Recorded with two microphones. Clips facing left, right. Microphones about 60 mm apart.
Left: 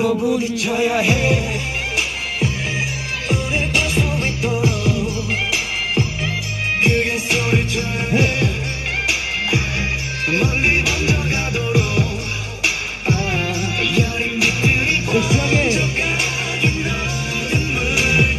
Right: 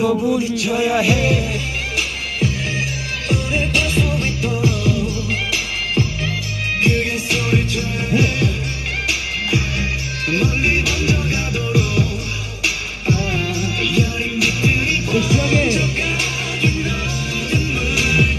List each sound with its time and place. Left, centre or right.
0.7 s music: left
3.3 s music: centre
6.8 s music: left
10.3 s music: left
12.6 s music: left